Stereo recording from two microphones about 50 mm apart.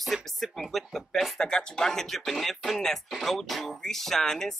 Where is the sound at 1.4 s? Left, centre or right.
Centre.